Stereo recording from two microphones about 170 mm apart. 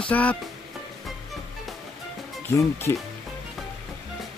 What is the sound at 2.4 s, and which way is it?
Speech, 15° left (ahead or behind).